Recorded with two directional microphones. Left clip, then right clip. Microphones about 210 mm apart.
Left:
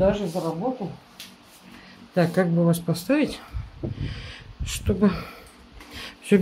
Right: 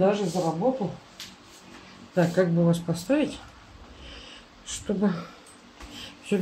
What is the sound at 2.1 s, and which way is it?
Speech, 45° left (ahead or behind).